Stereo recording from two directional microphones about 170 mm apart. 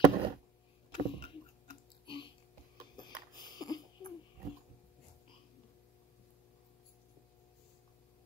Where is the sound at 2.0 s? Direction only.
30° left (ahead or behind).